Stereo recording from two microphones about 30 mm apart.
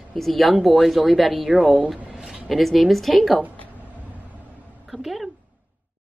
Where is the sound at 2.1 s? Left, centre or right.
Centre.